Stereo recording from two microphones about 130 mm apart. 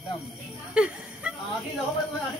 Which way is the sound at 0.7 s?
10° right (ahead or behind).